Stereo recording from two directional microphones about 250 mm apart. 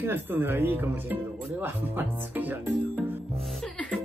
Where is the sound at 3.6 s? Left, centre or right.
Centre.